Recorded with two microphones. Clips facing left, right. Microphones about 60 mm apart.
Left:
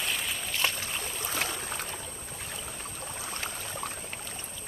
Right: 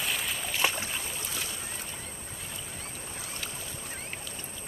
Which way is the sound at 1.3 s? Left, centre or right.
Left.